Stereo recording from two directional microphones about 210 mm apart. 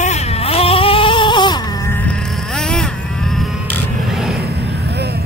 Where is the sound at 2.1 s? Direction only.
5° left (ahead or behind).